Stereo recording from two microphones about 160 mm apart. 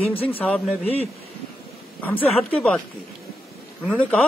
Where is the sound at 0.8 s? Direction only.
40° left (ahead or behind).